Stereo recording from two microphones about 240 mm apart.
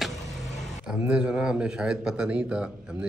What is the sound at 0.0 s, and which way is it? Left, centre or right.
Vehicle, centre.